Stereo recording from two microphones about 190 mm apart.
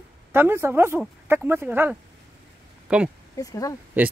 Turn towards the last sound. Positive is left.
turn(degrees=20)  # may be behind; listen again after turning